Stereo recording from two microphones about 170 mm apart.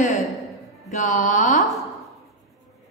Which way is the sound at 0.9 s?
40° left (ahead or behind).